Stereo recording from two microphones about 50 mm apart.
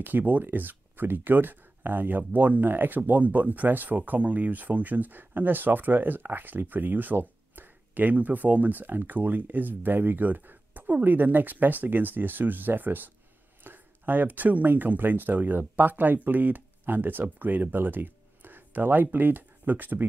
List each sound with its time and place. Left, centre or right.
0.0 s speech: right